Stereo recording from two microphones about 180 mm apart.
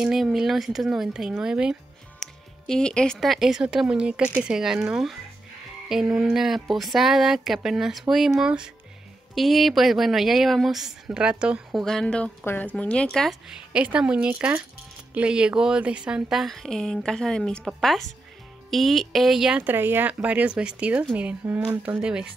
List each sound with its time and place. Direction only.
0.0 s speech: centre (ahead or behind)
6.1 s speech: centre (ahead or behind)